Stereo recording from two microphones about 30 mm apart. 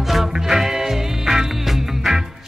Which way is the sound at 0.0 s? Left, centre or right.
Centre.